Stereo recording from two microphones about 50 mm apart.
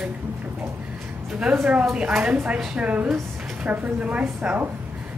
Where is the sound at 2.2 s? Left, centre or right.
Right.